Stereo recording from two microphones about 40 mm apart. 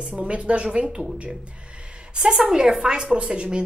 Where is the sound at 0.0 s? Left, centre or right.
Right.